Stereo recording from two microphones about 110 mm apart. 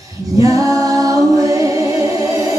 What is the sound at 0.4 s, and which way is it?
A capella, 30° right (ahead or behind).